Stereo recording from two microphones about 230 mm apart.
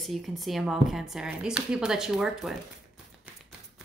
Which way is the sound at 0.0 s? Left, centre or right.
Centre.